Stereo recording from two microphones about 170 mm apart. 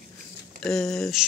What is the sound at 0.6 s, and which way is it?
Speech, 5° left (ahead or behind).